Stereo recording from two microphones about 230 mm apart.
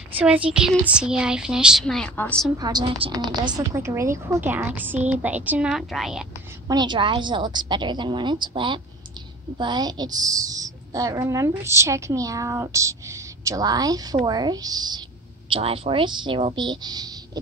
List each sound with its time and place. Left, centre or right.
0.1 s speech: centre
2.6 s a woman's voice: centre
6.7 s a woman's voice: centre